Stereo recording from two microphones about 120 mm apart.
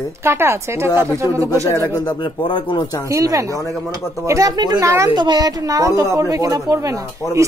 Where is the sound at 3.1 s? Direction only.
25° right (ahead or behind).